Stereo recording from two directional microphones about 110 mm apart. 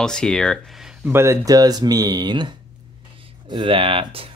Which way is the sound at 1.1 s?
25° right (ahead or behind).